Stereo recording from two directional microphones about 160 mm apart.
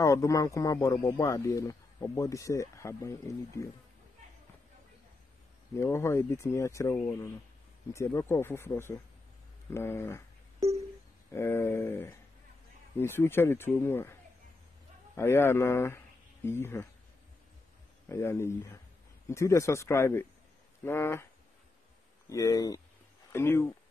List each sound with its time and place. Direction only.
0.0 s a man's voice: 20° left (ahead or behind)
5.8 s speech: 15° left (ahead or behind)
11.3 s speech: 15° left (ahead or behind)
15.1 s speech: 15° left (ahead or behind)
18.0 s speech: 15° left (ahead or behind)
22.3 s a man's voice: 20° left (ahead or behind)